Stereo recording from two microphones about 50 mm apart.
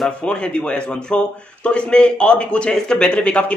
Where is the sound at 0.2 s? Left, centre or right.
Centre.